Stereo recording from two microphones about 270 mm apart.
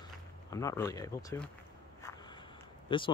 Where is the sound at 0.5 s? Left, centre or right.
Centre.